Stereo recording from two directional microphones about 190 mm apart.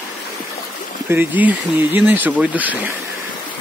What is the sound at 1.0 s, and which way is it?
Speech, 10° right (ahead or behind).